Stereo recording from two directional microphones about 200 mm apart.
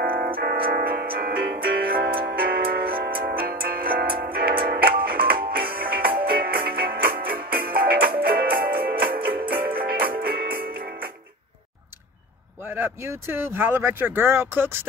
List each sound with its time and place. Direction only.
0.0 s music: 45° right (ahead or behind)
9.3 s music: 10° right (ahead or behind)
9.7 s music: 50° right (ahead or behind)
12.6 s speech: 10° right (ahead or behind)